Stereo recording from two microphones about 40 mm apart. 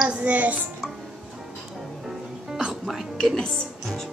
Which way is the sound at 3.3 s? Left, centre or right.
Left.